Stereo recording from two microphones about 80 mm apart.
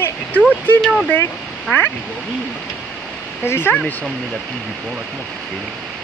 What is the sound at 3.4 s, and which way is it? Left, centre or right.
Speech, left.